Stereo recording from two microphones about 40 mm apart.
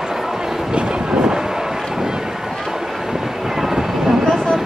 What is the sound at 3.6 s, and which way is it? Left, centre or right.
Vehicle, centre.